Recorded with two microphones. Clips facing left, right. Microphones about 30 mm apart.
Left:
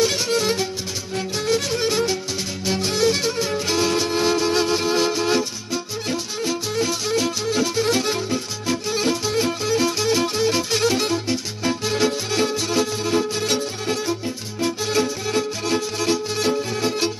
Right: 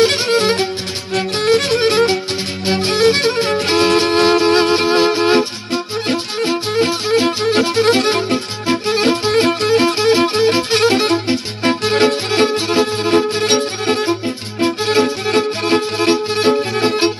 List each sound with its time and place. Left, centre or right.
0.0 s music: right
1.1 s music: right